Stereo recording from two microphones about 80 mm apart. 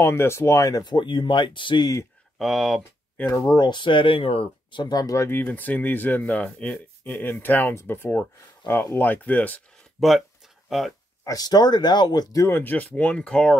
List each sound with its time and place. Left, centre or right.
0.0 s speech: left
0.9 s speech: left
2.3 s speech: centre
3.3 s speech: left
3.5 s speech: left
4.8 s speech: left
5.1 s speech: left
9.9 s speech: centre
11.2 s speech: left
12.4 s speech: left; by 13.6 s centre